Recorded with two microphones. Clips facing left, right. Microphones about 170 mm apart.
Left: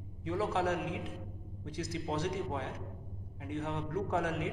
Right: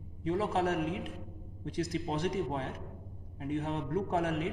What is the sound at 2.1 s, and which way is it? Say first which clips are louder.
A man's voice: right 2 dB; 35° right (ahead or behind).